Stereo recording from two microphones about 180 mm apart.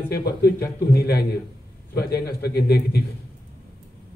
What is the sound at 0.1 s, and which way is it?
A man's voice, 60° left (ahead or behind).